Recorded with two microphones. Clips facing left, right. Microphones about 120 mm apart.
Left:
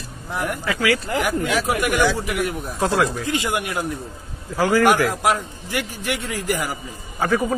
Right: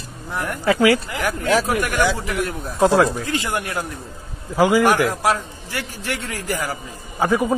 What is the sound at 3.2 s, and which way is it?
Speech, 15° left (ahead or behind).